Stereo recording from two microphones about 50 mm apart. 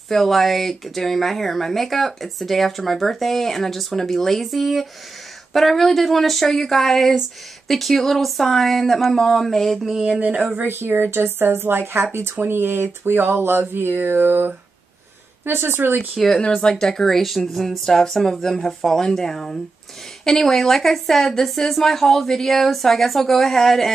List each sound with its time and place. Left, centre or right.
0.1 s speech: centre
10.2 s speech: right
10.5 s speech: right
16.2 s speech: centre